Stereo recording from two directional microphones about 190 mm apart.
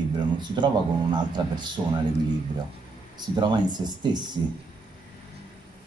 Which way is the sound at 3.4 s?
20° right (ahead or behind).